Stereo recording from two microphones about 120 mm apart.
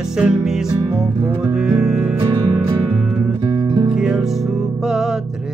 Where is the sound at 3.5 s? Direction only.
35° right (ahead or behind).